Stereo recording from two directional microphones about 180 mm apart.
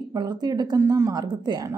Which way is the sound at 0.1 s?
20° right (ahead or behind).